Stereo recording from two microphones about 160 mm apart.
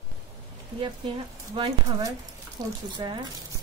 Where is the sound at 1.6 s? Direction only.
35° right (ahead or behind).